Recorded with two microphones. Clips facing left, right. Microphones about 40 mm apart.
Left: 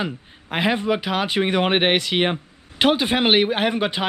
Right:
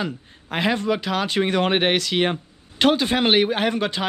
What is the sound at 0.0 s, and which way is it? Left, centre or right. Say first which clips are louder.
Speech: left 1 dB; centre.